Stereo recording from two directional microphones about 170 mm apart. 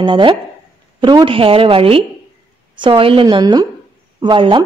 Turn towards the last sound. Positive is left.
turn(degrees=-30)  # may be behind; listen again after turning